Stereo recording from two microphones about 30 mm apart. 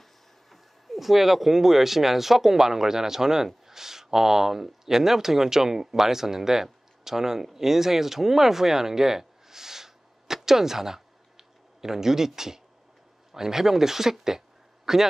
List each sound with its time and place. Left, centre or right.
0.5 s speech: centre